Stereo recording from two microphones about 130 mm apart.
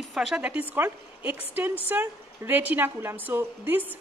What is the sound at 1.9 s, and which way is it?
A woman's voice, 15° right (ahead or behind).